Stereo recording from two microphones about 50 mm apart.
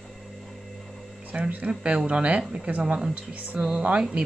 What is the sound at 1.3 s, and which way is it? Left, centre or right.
Speech, right.